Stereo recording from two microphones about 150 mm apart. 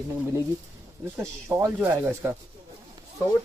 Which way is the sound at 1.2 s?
20° right (ahead or behind).